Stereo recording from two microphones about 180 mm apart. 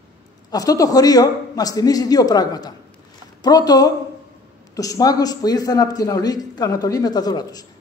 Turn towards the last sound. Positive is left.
turn(degrees=20)  # may be behind; listen again after turning